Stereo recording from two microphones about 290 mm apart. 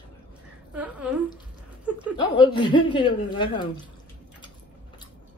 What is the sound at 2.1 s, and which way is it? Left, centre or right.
Speech, centre.